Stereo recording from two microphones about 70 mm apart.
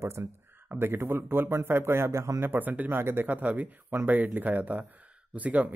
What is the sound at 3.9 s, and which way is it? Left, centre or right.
A man's voice, right.